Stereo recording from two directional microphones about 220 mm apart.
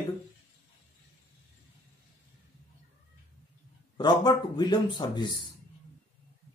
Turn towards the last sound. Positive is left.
turn(degrees=20)  # may be behind; listen again after turning